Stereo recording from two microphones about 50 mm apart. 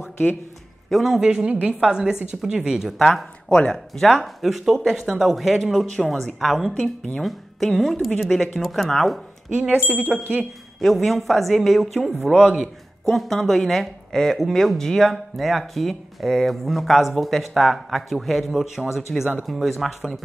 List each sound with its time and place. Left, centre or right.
0.0 s a sound: left
0.8 s speech: centre
1.4 s speech: right
3.0 s speech: centre
3.4 s speech: centre
3.7 s speech: centre
9.6 s speech: right
10.8 s speech: centre
13.1 s speech: centre